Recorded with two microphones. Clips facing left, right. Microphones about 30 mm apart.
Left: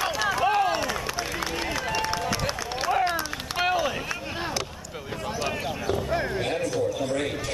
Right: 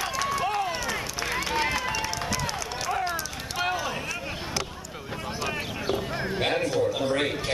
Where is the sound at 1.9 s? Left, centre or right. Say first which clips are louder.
Left 2 dB; left.